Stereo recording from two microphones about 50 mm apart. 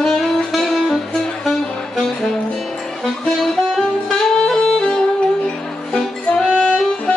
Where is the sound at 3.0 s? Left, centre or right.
Centre.